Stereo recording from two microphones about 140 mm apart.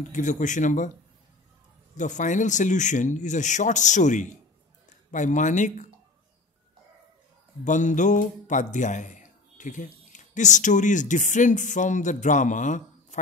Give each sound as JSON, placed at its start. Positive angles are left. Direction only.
{"t": 0.1, "sound": "speech", "side_deg": 60}
{"t": 2.0, "sound": "speech", "side_deg": 60}
{"t": 7.6, "sound": "speech", "side_deg": 65}